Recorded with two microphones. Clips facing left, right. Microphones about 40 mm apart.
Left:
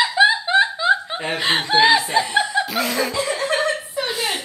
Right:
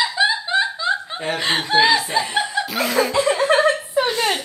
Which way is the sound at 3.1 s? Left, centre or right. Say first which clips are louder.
Right 5 dB; right.